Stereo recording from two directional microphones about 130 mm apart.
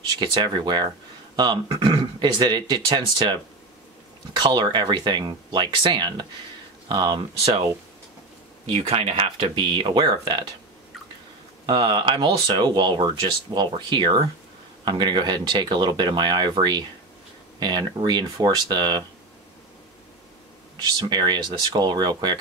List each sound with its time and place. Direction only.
0.2 s speech: 35° right (ahead or behind)
8.7 s speech: 45° right (ahead or behind)
11.6 s speech: 40° right (ahead or behind)
20.7 s speech: 35° right (ahead or behind)